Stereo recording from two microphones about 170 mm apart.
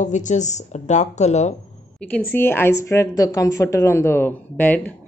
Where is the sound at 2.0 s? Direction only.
5° left (ahead or behind).